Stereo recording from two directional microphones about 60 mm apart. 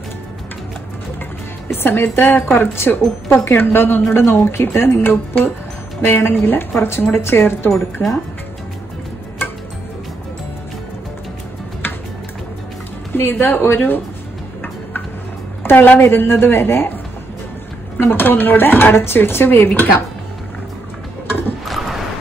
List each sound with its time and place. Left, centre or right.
1.7 s speech: left
7.7 s speech: centre
13.1 s speech: left
15.7 s speech: left
21.3 s a sound: left
21.6 s a sound: centre